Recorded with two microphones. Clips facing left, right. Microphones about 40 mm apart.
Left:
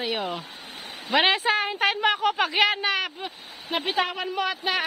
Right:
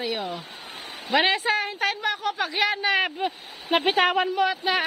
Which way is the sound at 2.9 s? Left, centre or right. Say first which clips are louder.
Right 5 dB; right.